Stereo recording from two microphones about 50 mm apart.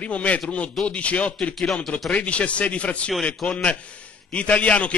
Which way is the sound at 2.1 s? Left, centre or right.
Left.